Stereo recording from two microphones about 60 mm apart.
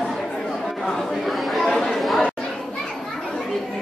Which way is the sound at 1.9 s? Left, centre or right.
Centre.